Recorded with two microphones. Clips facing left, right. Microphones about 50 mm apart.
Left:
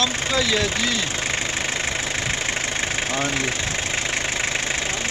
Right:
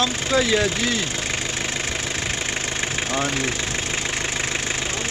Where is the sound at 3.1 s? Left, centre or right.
Centre.